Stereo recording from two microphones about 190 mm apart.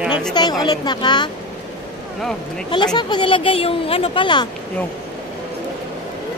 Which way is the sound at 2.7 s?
25° left (ahead or behind).